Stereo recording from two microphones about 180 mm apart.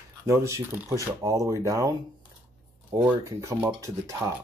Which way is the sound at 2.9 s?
15° right (ahead or behind).